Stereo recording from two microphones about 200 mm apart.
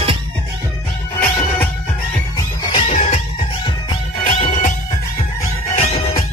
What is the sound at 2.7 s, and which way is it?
Music, 30° left (ahead or behind).